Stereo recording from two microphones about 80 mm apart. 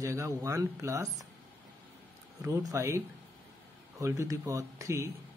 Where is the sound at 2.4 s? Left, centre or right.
Right.